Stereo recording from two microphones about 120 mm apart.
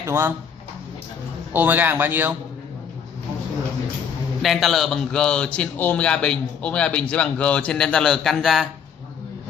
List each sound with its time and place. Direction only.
0.0 s speech: 20° right (ahead or behind)
1.5 s a man's voice: 15° right (ahead or behind)
4.4 s a man's voice: centre (ahead or behind)